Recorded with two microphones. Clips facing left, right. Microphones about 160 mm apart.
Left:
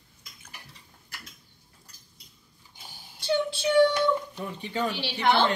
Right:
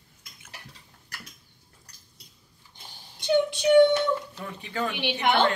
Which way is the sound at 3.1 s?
20° right (ahead or behind).